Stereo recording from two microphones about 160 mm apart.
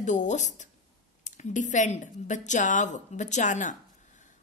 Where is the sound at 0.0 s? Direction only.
50° left (ahead or behind).